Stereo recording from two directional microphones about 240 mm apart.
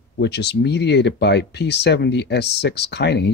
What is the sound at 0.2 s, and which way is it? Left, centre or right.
Speech, left.